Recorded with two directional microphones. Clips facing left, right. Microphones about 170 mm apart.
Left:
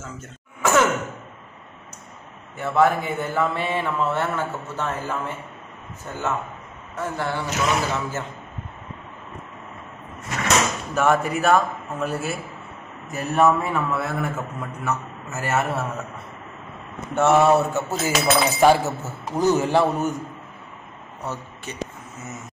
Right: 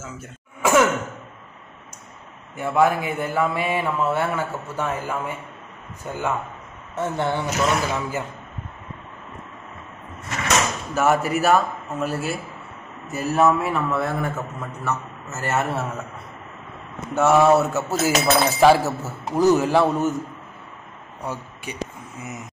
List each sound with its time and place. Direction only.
0.0 s throat clearing: 10° right (ahead or behind)
2.5 s a man's voice: 10° right (ahead or behind)
11.0 s a man's voice: 5° right (ahead or behind); by 15.6 s 15° left (ahead or behind)
15.7 s speech: centre (ahead or behind)
17.1 s speech: centre (ahead or behind)
21.2 s speech: 10° right (ahead or behind)